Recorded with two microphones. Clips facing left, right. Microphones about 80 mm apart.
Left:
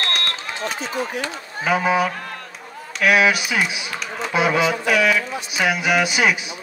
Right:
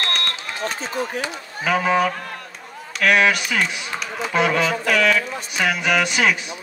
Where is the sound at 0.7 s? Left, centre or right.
Right.